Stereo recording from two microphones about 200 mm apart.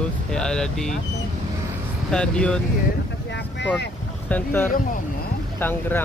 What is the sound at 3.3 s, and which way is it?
Boat, 60° left (ahead or behind).